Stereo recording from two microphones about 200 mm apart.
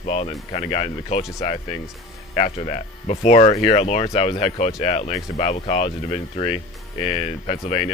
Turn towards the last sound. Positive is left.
turn(degrees=30)  # may be behind; listen again after turning